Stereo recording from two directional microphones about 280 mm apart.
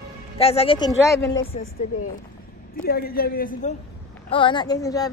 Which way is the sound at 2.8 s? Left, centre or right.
Left.